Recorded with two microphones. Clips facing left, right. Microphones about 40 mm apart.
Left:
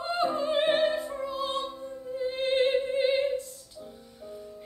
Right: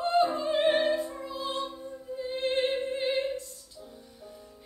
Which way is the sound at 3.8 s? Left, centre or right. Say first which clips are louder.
Left 3 dB; centre.